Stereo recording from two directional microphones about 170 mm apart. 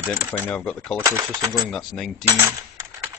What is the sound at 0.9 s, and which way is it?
Speech, 10° right (ahead or behind).